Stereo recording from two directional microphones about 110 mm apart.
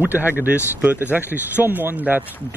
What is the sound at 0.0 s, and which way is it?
Speech, 15° right (ahead or behind).